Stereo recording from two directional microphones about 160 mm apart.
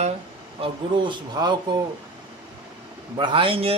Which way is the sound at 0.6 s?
30° right (ahead or behind).